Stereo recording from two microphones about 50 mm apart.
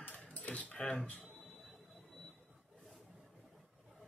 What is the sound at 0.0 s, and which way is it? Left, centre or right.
Cutlery, left.